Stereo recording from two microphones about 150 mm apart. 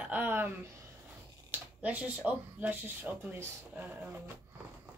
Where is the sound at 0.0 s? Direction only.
10° right (ahead or behind).